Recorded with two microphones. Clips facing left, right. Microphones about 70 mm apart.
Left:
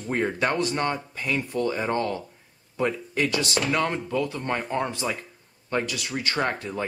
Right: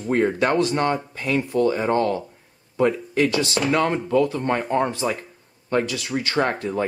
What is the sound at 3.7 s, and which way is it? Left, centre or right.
Speech, centre.